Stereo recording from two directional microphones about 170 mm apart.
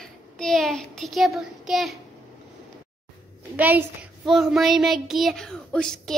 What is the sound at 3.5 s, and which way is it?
A woman's voice, 10° right (ahead or behind).